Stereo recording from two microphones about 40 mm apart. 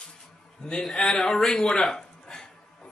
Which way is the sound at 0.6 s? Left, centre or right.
Centre.